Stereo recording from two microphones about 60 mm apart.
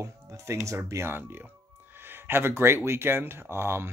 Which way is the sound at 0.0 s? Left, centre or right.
Right.